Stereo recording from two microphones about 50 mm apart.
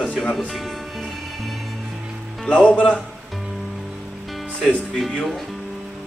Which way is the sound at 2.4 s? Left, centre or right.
Left.